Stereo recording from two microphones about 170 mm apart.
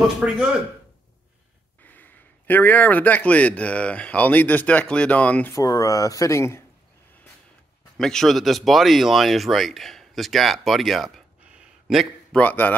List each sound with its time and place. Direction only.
0.2 s speech: 5° right (ahead or behind)
1.8 s speech: 10° left (ahead or behind)
5.5 s speech: 20° left (ahead or behind)
8.0 s speech: 5° left (ahead or behind)